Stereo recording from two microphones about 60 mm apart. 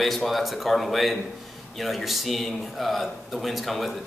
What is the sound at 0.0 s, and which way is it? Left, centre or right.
Speech, centre.